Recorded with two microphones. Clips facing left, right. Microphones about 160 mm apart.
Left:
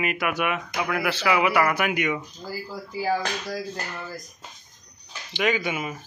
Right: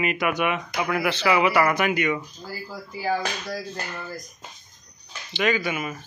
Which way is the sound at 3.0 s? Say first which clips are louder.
Even; centre (ahead or behind).